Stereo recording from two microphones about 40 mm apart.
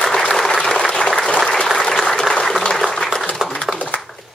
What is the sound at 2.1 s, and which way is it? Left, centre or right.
Applause, centre.